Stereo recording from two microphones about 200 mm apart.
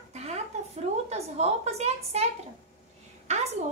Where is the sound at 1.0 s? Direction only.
35° right (ahead or behind).